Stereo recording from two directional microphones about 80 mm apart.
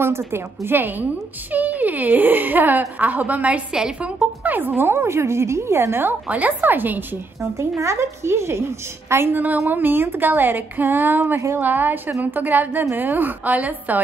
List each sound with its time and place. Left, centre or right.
0.0 s a woman's voice: right
7.5 s a woman's voice: right